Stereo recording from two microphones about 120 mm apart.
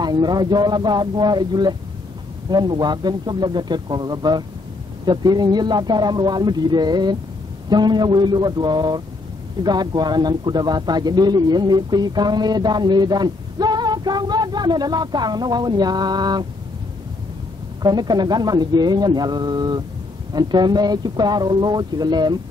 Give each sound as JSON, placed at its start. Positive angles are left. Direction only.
{"t": 0.0, "sound": "a man's voice", "side_deg": -35}
{"t": 17.8, "sound": "a man's voice", "side_deg": -35}